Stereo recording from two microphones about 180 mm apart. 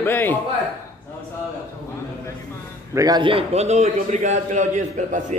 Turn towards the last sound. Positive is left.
turn(degrees=-40)  # may be behind; listen again after turning